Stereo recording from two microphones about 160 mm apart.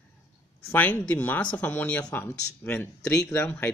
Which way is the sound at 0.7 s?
10° left (ahead or behind).